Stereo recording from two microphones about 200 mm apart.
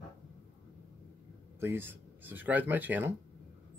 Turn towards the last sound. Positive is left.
turn(degrees=-10)  # may be behind; listen again after turning